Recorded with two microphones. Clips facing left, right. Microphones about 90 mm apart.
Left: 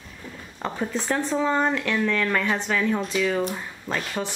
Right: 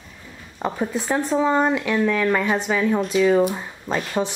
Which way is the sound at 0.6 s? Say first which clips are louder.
Right 4 dB; 10° right (ahead or behind).